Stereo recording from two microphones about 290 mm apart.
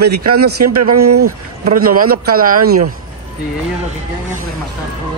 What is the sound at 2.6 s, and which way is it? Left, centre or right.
Speech, right.